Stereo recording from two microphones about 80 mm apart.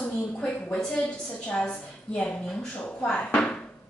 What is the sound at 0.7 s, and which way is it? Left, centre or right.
A woman's voice, centre.